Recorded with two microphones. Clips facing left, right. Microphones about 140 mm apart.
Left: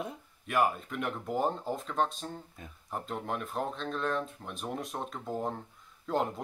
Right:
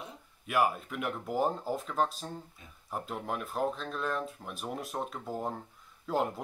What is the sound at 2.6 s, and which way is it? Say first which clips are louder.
Speech: left 7 dB; 50° left (ahead or behind).